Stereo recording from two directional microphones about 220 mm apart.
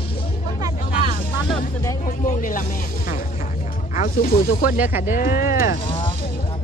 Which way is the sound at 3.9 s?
40° left (ahead or behind).